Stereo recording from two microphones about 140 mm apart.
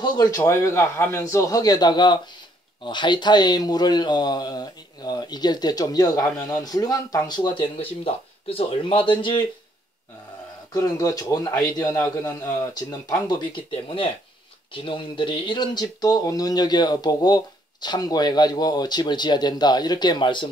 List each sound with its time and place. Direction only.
0.0 s a man's voice: 30° left (ahead or behind)
0.4 s speech: 20° left (ahead or behind); by 9.4 s 35° left (ahead or behind)
10.7 s speech: 25° left (ahead or behind)
13.3 s speech: 35° left (ahead or behind)